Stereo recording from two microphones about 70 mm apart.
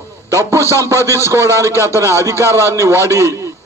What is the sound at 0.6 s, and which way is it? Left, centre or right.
Speech, left.